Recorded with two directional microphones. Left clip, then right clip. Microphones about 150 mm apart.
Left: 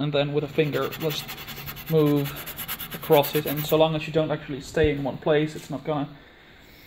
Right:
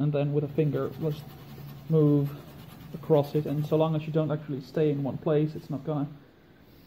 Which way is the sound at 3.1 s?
Centre (ahead or behind).